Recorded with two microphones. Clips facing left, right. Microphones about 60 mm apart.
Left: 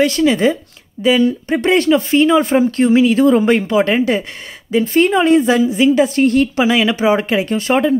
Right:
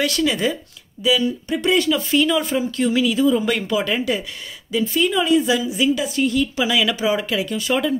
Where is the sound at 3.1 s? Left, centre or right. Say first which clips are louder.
Left 6 dB; left.